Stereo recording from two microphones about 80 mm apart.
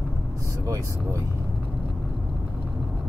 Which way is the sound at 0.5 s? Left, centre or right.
Right.